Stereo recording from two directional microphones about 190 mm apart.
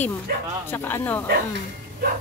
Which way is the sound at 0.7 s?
10° left (ahead or behind).